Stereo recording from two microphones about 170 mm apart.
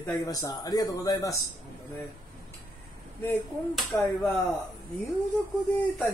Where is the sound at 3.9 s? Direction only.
10° left (ahead or behind).